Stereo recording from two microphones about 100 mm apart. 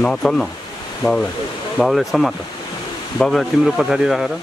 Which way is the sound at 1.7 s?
Centre (ahead or behind).